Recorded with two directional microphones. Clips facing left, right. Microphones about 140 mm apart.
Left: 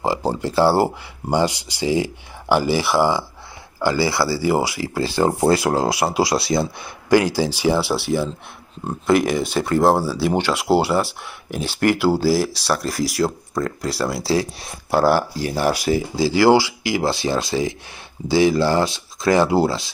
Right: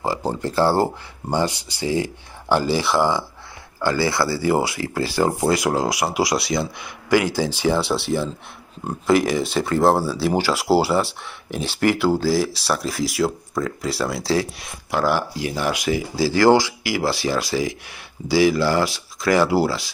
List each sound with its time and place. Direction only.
0.0 s speech: 15° left (ahead or behind)
4.8 s speech: 25° left (ahead or behind)
7.3 s speech: 10° left (ahead or behind)
14.6 s speech: 35° left (ahead or behind)
16.2 s speech: 15° left (ahead or behind)